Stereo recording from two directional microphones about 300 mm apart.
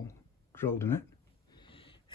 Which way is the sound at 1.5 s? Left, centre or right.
Centre.